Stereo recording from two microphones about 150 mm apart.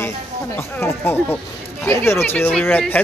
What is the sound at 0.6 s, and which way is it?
Speech, 15° left (ahead or behind).